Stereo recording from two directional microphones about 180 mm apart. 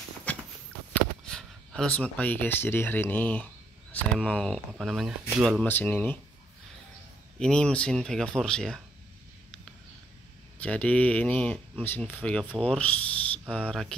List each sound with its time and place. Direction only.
0.3 s horse: 10° left (ahead or behind)
1.2 s speech: 5° left (ahead or behind)
7.3 s speech: 5° left (ahead or behind)
10.6 s speech: 5° left (ahead or behind)